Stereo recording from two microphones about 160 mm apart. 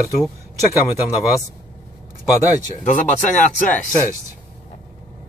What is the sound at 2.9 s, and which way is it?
Speech, 50° left (ahead or behind).